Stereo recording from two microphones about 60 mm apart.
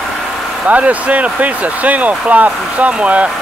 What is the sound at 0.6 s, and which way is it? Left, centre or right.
Speech, right.